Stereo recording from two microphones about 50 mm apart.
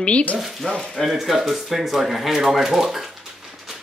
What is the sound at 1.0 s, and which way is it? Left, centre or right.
Speech, centre.